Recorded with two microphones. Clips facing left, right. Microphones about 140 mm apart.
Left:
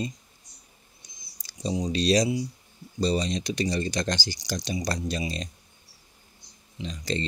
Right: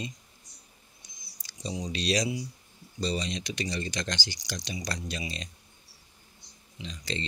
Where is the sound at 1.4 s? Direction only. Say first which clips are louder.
Left 7 dB; 35° left (ahead or behind).